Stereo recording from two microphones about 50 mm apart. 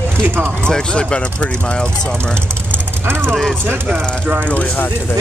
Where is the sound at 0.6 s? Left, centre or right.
Centre.